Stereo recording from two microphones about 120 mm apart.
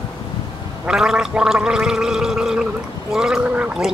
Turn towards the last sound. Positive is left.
turn(degrees=-10)  # may be behind; listen again after turning